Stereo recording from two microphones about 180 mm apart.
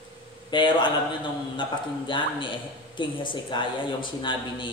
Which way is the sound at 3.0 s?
25° left (ahead or behind).